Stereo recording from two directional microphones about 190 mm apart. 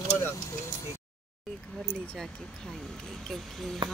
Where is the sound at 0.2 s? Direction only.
15° left (ahead or behind).